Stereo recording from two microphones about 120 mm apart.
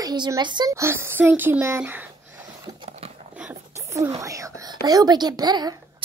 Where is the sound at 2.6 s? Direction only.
35° right (ahead or behind).